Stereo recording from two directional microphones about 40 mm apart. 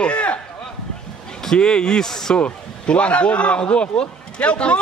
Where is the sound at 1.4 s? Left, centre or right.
Centre.